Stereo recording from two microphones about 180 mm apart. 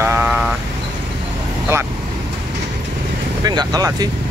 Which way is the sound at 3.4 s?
20° right (ahead or behind).